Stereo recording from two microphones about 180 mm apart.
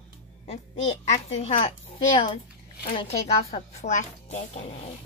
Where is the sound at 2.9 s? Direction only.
35° left (ahead or behind).